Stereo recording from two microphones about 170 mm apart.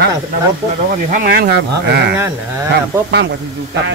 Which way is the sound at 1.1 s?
60° right (ahead or behind).